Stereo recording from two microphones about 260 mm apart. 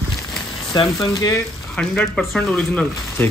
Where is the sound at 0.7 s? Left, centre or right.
Centre.